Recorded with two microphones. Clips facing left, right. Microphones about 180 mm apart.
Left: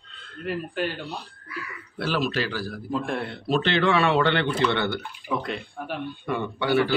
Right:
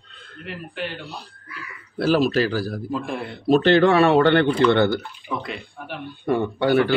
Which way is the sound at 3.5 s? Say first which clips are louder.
Right 7 dB; 45° right (ahead or behind).